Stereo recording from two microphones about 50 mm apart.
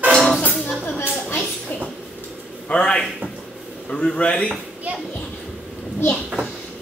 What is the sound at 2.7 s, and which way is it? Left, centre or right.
A man's voice, centre.